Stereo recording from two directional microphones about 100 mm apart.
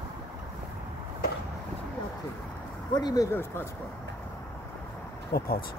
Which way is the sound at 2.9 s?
45° left (ahead or behind).